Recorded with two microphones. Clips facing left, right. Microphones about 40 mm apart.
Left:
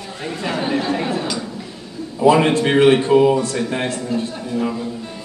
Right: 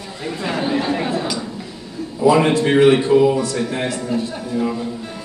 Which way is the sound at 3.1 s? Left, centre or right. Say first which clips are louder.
Left 1 dB; centre.